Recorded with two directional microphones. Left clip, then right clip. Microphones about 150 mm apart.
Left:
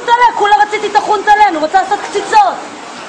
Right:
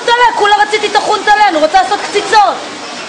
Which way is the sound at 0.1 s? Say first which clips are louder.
Even; 20° right (ahead or behind).